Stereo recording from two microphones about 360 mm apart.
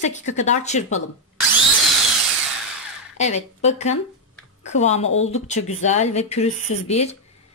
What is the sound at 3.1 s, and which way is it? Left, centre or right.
A woman's voice, centre.